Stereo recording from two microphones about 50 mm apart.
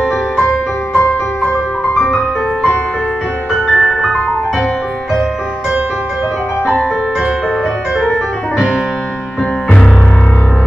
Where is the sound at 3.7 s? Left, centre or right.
Centre.